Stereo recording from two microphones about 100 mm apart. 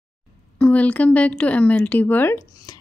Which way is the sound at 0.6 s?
15° left (ahead or behind).